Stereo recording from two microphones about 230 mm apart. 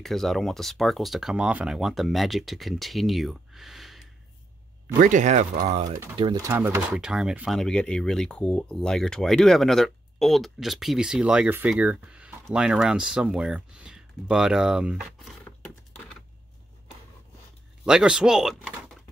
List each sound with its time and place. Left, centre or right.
0.0 s speech: centre
5.0 s speech: right; by 15.0 s centre
17.8 s speech: centre